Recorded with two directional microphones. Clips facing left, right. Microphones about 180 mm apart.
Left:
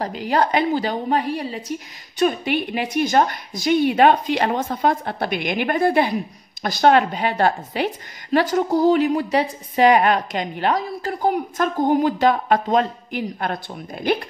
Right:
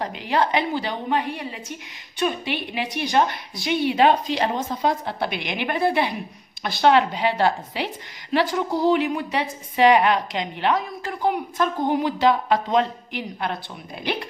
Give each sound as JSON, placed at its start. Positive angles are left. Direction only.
{"t": 0.0, "sound": "a woman's voice", "side_deg": 40}